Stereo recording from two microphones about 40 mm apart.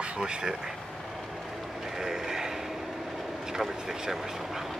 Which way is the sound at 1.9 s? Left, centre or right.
Centre.